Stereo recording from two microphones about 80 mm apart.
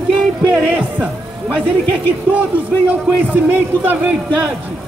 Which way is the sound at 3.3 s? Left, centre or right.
Right.